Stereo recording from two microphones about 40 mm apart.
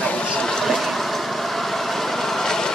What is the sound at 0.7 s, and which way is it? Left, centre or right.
Vehicle, centre.